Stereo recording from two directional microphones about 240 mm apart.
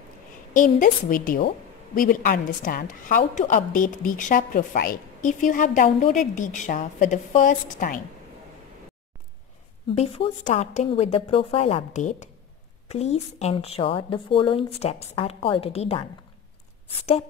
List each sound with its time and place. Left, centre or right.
0.5 s a woman's voice: left
9.9 s a woman's voice: left